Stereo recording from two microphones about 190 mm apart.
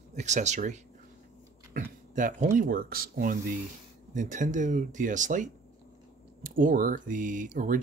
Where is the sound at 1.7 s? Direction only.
45° right (ahead or behind).